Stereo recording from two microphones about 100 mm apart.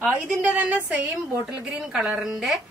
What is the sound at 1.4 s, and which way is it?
Speech, 5° right (ahead or behind).